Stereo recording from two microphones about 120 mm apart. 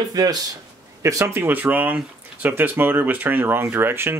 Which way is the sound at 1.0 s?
25° right (ahead or behind).